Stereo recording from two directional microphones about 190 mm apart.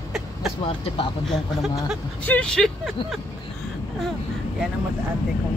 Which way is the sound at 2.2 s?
5° left (ahead or behind).